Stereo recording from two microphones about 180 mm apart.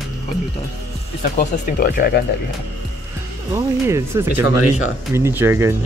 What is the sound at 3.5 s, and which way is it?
Speech, 15° right (ahead or behind).